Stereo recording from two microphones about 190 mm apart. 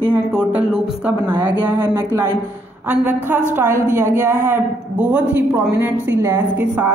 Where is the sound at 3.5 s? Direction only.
15° right (ahead or behind).